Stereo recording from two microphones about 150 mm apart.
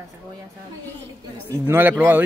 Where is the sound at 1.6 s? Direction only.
15° right (ahead or behind).